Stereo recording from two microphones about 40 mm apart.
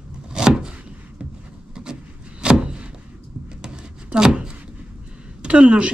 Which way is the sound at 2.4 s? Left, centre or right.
Right.